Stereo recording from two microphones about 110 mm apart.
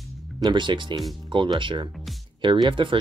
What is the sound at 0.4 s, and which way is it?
Speech, 45° right (ahead or behind).